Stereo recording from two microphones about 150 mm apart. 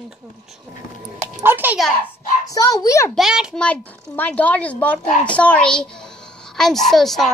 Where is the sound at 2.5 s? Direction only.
25° left (ahead or behind).